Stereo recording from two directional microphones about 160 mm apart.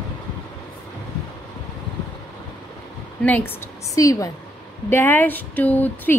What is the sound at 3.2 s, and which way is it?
Speech, 10° left (ahead or behind).